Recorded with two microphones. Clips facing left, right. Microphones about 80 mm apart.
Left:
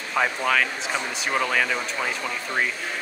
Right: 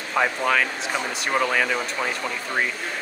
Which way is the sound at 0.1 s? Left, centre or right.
Centre.